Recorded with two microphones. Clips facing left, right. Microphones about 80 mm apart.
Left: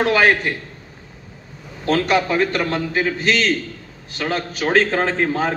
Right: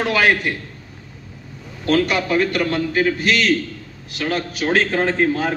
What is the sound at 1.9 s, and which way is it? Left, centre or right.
A man's voice, left.